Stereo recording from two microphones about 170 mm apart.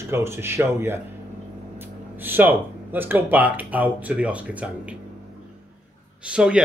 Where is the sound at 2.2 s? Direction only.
10° right (ahead or behind).